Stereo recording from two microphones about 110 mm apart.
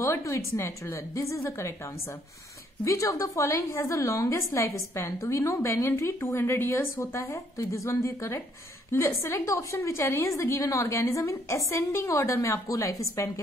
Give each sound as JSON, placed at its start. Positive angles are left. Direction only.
{"t": 0.0, "sound": "a woman's voice", "side_deg": 25}
{"t": 2.8, "sound": "a woman's voice", "side_deg": 30}